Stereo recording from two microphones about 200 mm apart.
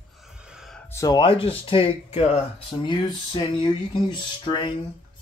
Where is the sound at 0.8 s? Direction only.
15° left (ahead or behind).